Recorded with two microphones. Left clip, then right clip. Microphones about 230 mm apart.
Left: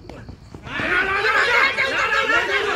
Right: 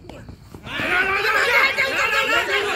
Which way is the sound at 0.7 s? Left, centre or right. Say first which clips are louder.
Even; right.